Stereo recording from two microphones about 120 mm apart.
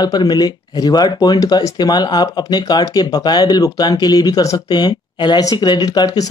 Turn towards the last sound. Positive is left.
turn(degrees=35)  # may be behind; listen again after turning